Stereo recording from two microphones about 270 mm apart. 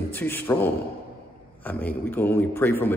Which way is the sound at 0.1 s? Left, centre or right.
Centre.